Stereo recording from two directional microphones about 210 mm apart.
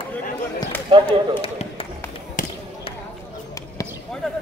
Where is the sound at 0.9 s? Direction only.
25° right (ahead or behind).